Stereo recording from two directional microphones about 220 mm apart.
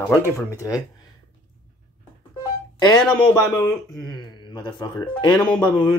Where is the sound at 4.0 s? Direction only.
20° left (ahead or behind).